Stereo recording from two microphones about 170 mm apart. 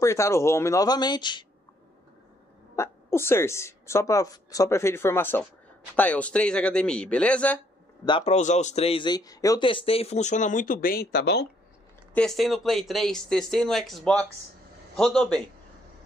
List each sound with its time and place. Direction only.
0.0 s a woman's voice: 15° left (ahead or behind)
2.7 s a woman's voice: 15° left (ahead or behind)
8.0 s a man's voice: 35° left (ahead or behind)
9.7 s speech: 35° left (ahead or behind); by 11.4 s 70° left (ahead or behind)
12.1 s speech: 5° left (ahead or behind)